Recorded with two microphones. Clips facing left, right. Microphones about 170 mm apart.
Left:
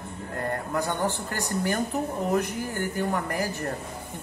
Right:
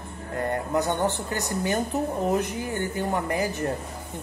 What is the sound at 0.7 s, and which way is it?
Speech, 20° right (ahead or behind).